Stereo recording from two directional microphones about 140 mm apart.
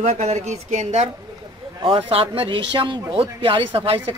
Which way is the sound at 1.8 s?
40° right (ahead or behind).